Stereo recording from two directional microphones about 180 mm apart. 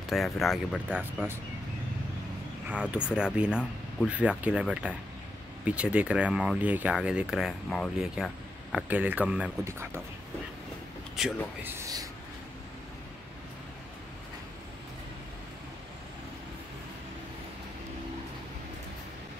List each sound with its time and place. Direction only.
0.1 s speech: centre (ahead or behind)
2.7 s speech: 5° right (ahead or behind)
11.1 s speech: 5° right (ahead or behind)
11.7 s speech: 20° right (ahead or behind)